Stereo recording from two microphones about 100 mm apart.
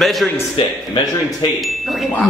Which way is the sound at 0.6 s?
65° left (ahead or behind).